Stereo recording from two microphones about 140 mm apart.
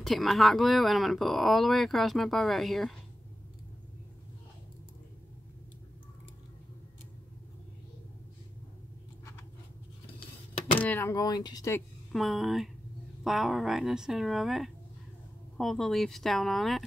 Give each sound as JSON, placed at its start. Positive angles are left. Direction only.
{"t": 0.0, "sound": "speech", "side_deg": 0}
{"t": 10.7, "sound": "speech", "side_deg": 10}
{"t": 12.1, "sound": "speech", "side_deg": 0}